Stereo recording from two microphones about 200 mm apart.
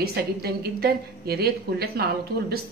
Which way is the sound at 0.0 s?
50° right (ahead or behind).